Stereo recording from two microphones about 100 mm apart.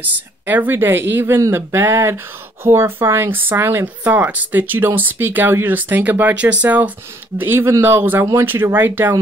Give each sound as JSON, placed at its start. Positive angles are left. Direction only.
{"t": 0.0, "sound": "speech", "side_deg": -15}